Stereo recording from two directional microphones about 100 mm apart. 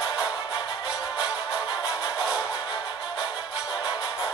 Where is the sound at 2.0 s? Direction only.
10° right (ahead or behind).